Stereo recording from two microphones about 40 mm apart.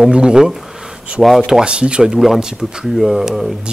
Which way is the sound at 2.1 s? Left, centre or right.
Centre.